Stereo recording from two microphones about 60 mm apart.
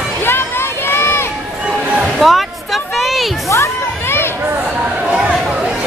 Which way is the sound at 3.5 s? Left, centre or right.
Left.